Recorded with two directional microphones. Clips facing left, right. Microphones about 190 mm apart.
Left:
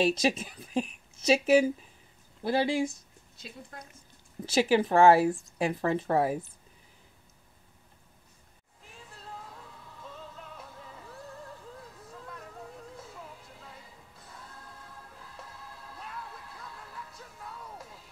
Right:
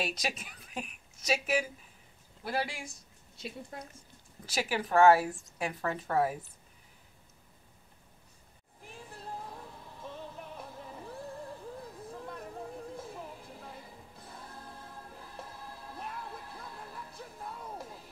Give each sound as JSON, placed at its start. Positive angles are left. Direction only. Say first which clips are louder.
{"t": 0.0, "sound": "speech", "louder": "left 10 dB", "side_deg": 30}
{"t": 4.5, "sound": "speech", "louder": "left 8 dB", "side_deg": 25}
{"t": 9.4, "sound": "music", "louder": "right 3 dB", "side_deg": -25}